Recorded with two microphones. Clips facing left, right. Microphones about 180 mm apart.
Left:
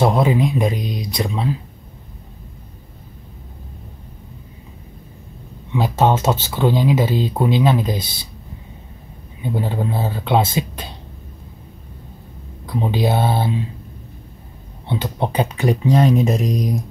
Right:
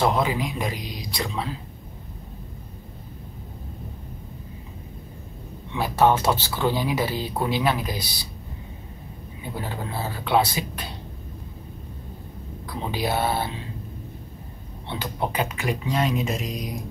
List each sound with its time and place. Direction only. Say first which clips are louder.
0.0 s speech: left 6 dB; 25° left (ahead or behind)
5.8 s speech: left 3 dB; 20° left (ahead or behind)
9.4 s speech: left 9 dB; 20° left (ahead or behind)
12.6 s speech: left 7 dB; 20° left (ahead or behind)
14.9 s speech: left 6 dB; 25° left (ahead or behind); by 16.7 s 40° left (ahead or behind)